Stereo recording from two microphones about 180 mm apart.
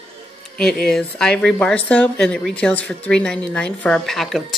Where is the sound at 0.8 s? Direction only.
5° left (ahead or behind).